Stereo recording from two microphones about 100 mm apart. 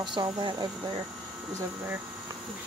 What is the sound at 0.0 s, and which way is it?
Speech, 50° right (ahead or behind).